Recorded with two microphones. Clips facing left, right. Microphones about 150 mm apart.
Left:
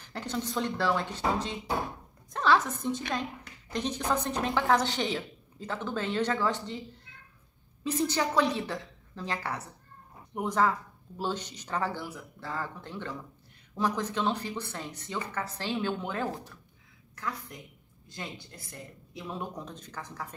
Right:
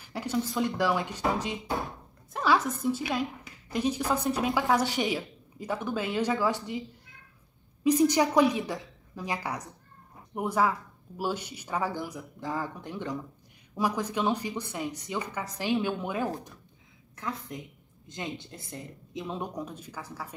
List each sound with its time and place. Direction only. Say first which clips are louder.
0.0 s a woman's voice: right 4 dB; 10° right (ahead or behind)
7.8 s a woman's voice: right 6 dB; 15° right (ahead or behind)
17.1 s a woman's voice: right 2 dB; 25° right (ahead or behind)